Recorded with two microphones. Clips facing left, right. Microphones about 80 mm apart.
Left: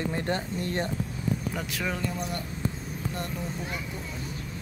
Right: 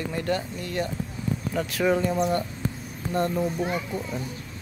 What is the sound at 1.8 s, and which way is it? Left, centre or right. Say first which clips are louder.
Speech: right 10 dB; right.